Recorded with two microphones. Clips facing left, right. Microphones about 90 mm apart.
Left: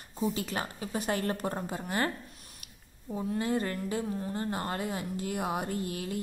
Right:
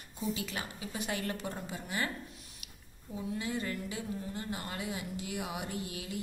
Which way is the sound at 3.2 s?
45° left (ahead or behind).